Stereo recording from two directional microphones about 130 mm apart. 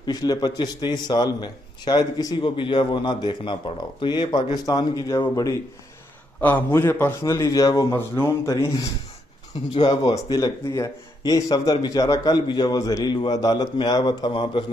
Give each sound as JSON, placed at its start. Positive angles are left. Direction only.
{"t": 0.0, "sound": "a man's voice", "side_deg": 30}
{"t": 7.9, "sound": "mantra", "side_deg": 15}
{"t": 9.8, "sound": "a man's voice", "side_deg": 30}